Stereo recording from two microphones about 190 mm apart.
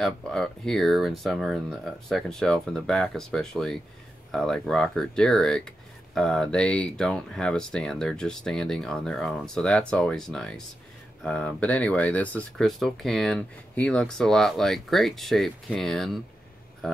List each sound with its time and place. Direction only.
0.0 s speech: 5° left (ahead or behind)